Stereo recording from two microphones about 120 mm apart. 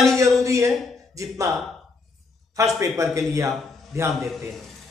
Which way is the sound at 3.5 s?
Centre (ahead or behind).